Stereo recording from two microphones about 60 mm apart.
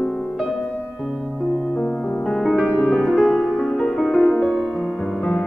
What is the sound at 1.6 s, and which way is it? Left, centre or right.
Music, centre.